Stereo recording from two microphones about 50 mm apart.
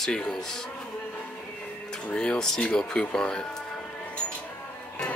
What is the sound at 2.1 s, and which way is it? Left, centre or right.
Speech, centre.